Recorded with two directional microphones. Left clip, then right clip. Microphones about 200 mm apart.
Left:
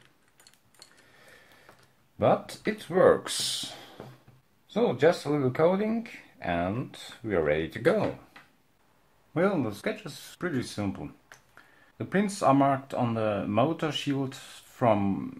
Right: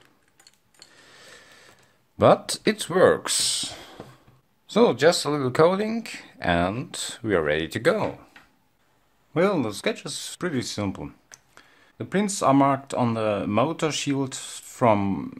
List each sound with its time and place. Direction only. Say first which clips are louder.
1.0 s a sound: right 7 dB; 40° right (ahead or behind)
2.1 s speech: right 7 dB; 45° right (ahead or behind)
4.6 s speech: right 5 dB; 45° right (ahead or behind)
9.3 s speech: right 4 dB; 40° right (ahead or behind)